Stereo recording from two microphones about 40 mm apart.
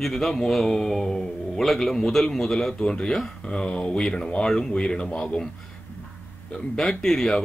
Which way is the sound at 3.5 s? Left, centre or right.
Left.